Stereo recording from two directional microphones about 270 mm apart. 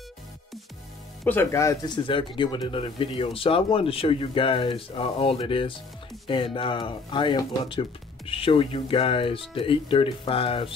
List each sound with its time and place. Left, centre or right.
1.2 s speech: centre